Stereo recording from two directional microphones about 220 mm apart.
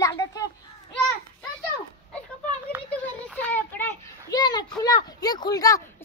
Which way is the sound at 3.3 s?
10° left (ahead or behind).